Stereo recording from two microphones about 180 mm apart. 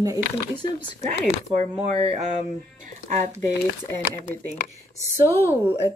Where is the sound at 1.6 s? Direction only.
35° right (ahead or behind).